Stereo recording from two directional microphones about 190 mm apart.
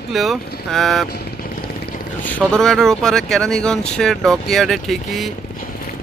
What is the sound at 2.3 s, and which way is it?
Speech, 5° left (ahead or behind).